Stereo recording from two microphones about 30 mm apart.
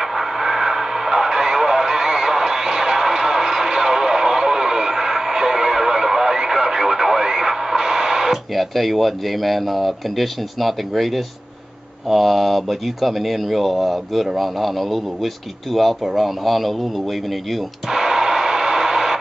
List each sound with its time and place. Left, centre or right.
0.0 s radio: centre
8.5 s speech: centre
17.8 s radio: centre